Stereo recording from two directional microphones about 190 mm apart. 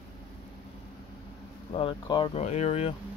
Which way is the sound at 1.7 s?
30° left (ahead or behind).